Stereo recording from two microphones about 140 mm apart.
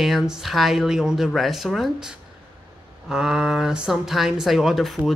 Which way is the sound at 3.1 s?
5° right (ahead or behind).